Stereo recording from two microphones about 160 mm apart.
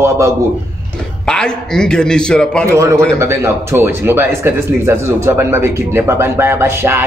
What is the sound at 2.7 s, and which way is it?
Speech, 20° right (ahead or behind).